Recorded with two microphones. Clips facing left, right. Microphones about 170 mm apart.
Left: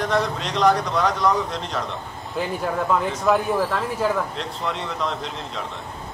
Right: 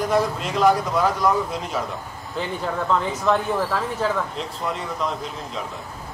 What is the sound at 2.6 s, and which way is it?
Speech, 5° left (ahead or behind).